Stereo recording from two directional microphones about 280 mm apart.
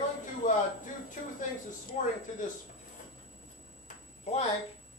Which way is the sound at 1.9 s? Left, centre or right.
Left.